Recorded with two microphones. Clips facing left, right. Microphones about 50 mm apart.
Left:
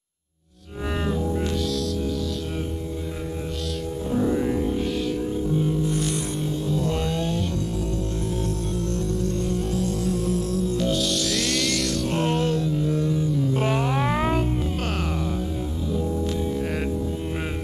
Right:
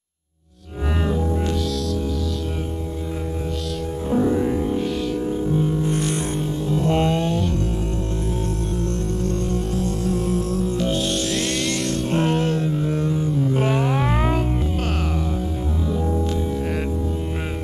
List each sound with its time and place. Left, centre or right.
4.2 s music: centre
5.8 s a sound: right
6.7 s vehicle: right
9.8 s music: right
12.5 s a sound: right
13.6 s music: centre